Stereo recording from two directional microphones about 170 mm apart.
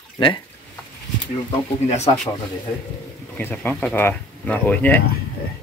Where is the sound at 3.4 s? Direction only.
10° left (ahead or behind).